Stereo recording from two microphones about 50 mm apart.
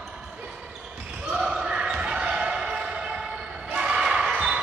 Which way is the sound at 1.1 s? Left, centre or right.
Centre.